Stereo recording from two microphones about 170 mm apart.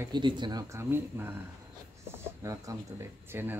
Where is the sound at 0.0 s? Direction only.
25° right (ahead or behind).